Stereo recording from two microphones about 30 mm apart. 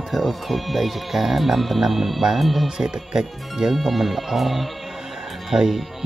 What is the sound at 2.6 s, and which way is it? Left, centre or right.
Speech, centre.